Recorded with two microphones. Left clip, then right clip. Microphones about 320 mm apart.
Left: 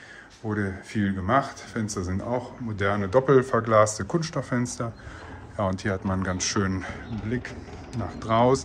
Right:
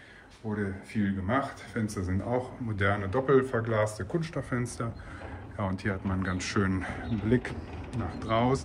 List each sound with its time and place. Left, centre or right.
0.5 s speech: left; by 7.0 s centre
7.2 s speech: centre
7.9 s speech: centre